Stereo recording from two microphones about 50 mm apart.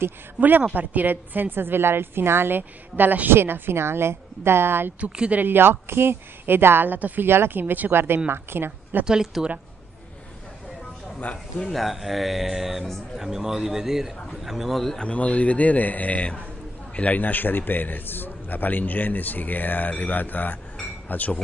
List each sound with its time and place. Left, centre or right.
0.4 s a woman's voice: right
7.0 s a woman's voice: right
7.2 s a woman's voice: right
9.0 s speech: centre
11.6 s speech: centre
15.0 s a man's voice: left